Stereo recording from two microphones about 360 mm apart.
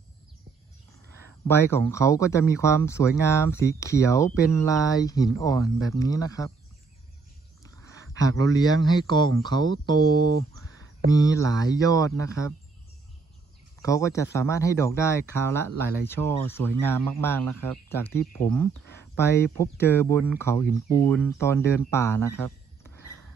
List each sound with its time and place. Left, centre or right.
1.5 s speech: centre
9.4 s speech: centre
9.9 s speech: right
10.6 s a sound: right
11.1 s speech: centre
13.8 s speech: centre